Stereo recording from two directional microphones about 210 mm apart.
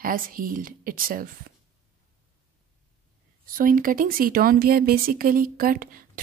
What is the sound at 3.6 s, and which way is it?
Speech, 40° right (ahead or behind).